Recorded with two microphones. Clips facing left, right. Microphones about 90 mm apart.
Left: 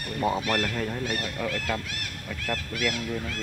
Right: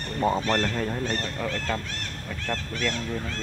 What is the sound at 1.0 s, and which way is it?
Speech, 10° left (ahead or behind).